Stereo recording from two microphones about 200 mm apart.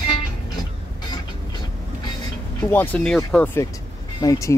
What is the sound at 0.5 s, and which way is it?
Vehicle, 20° left (ahead or behind).